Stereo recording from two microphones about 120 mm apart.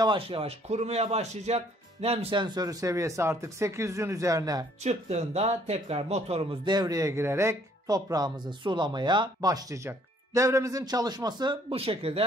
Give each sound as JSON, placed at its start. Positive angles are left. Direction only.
{"t": 0.0, "sound": "speech", "side_deg": -45}
{"t": 2.3, "sound": "speech", "side_deg": -35}
{"t": 4.8, "sound": "speech", "side_deg": -65}
{"t": 6.6, "sound": "speech", "side_deg": -35}
{"t": 11.7, "sound": "speech", "side_deg": -55}